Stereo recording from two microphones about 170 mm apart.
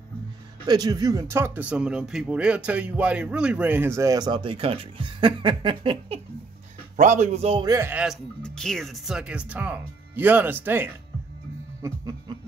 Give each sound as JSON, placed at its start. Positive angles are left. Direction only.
{"t": 0.7, "sound": "speech", "side_deg": -25}
{"t": 7.0, "sound": "a man's voice", "side_deg": -45}
{"t": 7.6, "sound": "a man's voice", "side_deg": -20}
{"t": 7.9, "sound": "speech", "side_deg": -5}